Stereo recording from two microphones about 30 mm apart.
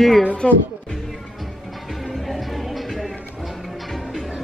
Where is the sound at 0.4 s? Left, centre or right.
Left.